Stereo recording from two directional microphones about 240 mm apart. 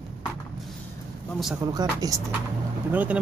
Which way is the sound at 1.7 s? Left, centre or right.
Centre.